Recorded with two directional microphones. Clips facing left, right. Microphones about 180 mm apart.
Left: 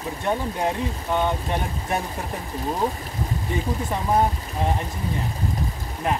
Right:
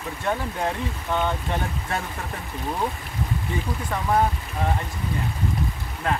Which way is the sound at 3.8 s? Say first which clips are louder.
Even; 20° left (ahead or behind).